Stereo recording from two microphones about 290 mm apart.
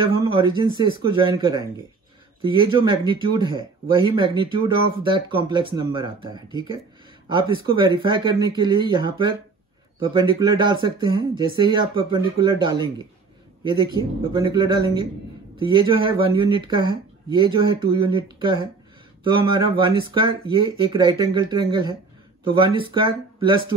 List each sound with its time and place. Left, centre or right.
0.1 s speech: centre
14.3 s speech: centre